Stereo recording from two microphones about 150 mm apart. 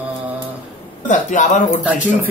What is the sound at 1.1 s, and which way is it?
Speech, 55° left (ahead or behind).